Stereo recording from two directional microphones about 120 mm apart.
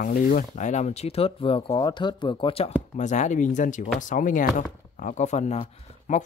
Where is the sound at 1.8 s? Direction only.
40° left (ahead or behind).